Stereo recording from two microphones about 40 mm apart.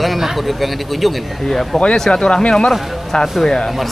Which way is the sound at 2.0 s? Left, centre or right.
Centre.